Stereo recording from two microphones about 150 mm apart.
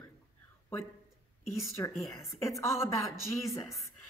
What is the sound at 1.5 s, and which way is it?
A woman's voice, 20° left (ahead or behind).